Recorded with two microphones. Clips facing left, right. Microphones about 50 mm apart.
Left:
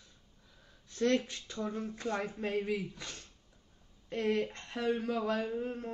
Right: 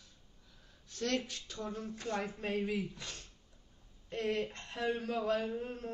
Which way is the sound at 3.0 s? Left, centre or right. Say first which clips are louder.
Left 1 dB; left.